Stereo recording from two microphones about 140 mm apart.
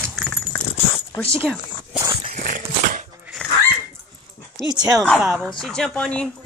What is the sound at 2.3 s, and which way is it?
Horse, 80° right.